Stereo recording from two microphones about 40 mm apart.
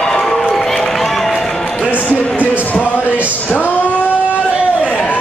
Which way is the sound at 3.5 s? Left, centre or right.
Left.